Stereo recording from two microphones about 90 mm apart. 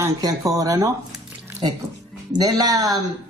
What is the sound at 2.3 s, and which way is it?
Speech, 45° right (ahead or behind).